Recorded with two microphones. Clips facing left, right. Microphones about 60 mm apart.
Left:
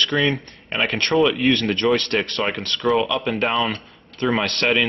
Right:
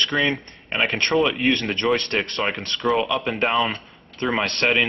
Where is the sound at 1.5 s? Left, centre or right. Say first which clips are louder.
Left 3 dB; centre.